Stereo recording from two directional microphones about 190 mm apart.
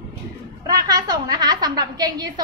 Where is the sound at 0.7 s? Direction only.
20° right (ahead or behind).